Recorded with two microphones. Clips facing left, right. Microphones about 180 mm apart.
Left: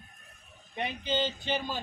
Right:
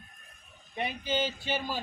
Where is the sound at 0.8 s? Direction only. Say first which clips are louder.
Even; 5° right (ahead or behind).